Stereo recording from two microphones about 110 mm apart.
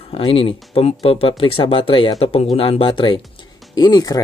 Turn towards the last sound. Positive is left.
turn(degrees=35)  # may be behind; listen again after turning